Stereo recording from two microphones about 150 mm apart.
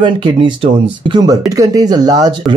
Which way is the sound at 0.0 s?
35° right (ahead or behind).